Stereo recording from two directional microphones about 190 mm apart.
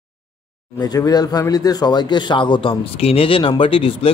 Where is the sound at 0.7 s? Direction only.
20° left (ahead or behind).